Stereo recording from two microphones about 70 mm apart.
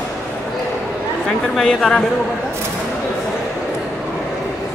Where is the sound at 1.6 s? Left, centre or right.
Centre.